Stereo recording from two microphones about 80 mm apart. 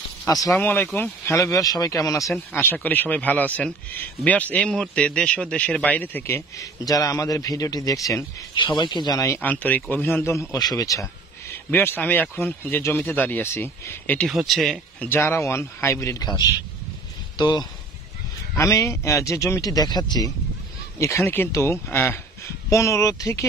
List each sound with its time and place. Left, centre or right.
0.6 s a man's voice: left
1.3 s a man's voice: left
2.5 s a man's voice: left
6.2 s a man's voice: left
8.5 s speech: left
9.4 s a man's voice: left
10.5 s a man's voice: left
11.5 s a man's voice: left
14.3 s speech: centre
15.0 s speech: left
16.2 s a man's voice: left
18.6 s a man's voice: left
21.0 s speech: left